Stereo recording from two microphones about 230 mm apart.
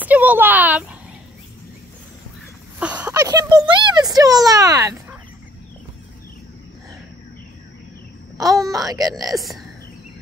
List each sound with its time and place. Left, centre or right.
0.0 s speech: centre
2.8 s a sound: centre
3.8 s a child's voice: centre
8.5 s a woman's voice: centre
9.1 s speech: centre